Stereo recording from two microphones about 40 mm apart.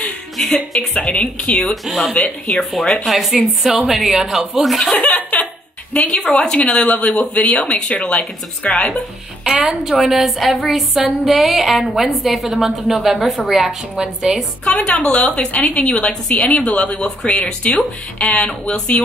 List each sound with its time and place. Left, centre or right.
0.5 s a woman's voice: centre
1.1 s a woman's voice: left
1.9 s speech: centre
2.5 s a woman's voice: centre
3.1 s a sound: centre
3.7 s speech: centre
4.9 s a sound: left
5.9 s a woman's voice: left
9.4 s a woman's voice: centre
10.0 s a sound: centre
14.8 s a woman's voice: left